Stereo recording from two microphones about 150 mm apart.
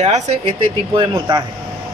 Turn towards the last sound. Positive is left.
turn(degrees=-30)  # may be behind; listen again after turning